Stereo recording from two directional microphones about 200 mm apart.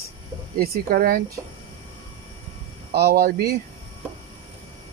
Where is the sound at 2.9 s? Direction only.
55° right (ahead or behind).